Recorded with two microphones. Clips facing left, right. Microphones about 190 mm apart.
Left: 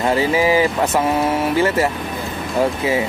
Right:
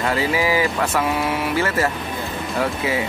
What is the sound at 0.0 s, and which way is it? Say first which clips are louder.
Speech: left 4 dB; 20° left (ahead or behind).